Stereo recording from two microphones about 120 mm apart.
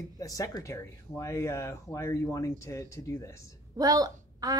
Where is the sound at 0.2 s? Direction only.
30° left (ahead or behind).